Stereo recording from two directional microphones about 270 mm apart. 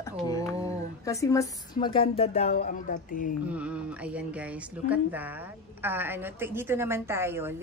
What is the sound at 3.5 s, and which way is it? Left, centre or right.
Speech, centre.